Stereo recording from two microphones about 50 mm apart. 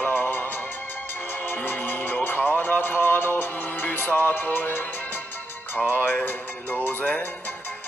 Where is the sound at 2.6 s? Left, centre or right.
Left.